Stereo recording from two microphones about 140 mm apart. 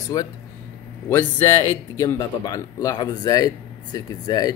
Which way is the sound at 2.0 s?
25° left (ahead or behind).